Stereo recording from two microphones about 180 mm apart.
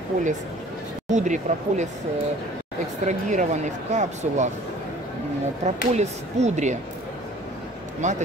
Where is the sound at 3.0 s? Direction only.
40° right (ahead or behind).